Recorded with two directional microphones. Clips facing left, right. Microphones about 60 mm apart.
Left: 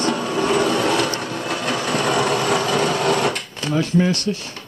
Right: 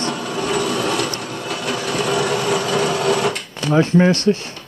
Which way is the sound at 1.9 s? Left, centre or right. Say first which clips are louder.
Even; left.